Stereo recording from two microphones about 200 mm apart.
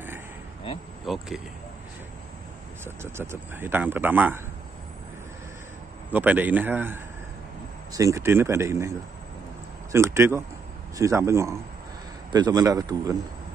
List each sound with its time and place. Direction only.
1.0 s speech: centre (ahead or behind)
2.8 s a man's voice: 10° right (ahead or behind)
6.1 s a man's voice: 10° right (ahead or behind)
9.9 s a man's voice: 15° right (ahead or behind)